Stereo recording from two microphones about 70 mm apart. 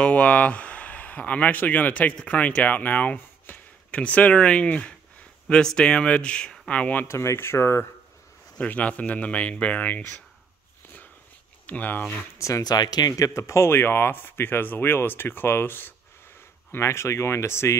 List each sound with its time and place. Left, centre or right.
0.0 s speech: centre
7.1 s speech: left
8.5 s speech: left
11.6 s speech: left
12.4 s speech: left
12.6 s speech: left
16.7 s speech: left